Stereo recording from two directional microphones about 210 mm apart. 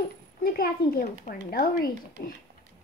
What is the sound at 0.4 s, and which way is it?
A child's voice, 45° left (ahead or behind).